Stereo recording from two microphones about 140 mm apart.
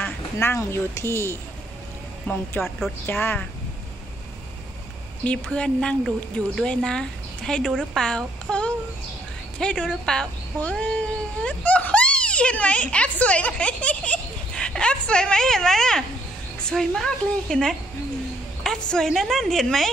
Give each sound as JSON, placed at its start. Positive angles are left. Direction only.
{"t": 0.0, "sound": "speech", "side_deg": 15}
{"t": 2.6, "sound": "speech", "side_deg": 15}
{"t": 5.2, "sound": "speech", "side_deg": 10}